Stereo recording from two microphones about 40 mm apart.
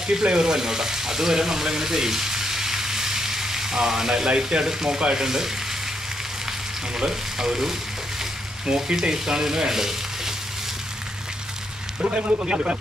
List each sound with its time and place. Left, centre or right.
0.0 s speech: right
4.4 s frying: centre
7.0 s frying: centre
8.7 s frying: centre
9.1 s speech: centre
12.4 s frying: right